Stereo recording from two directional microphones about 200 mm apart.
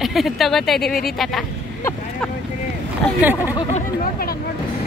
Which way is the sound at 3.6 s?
35° left (ahead or behind).